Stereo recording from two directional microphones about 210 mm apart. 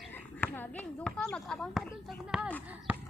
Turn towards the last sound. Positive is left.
turn(degrees=-5)  # may be behind; listen again after turning